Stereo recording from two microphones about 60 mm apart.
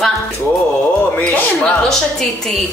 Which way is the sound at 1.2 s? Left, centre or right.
Left.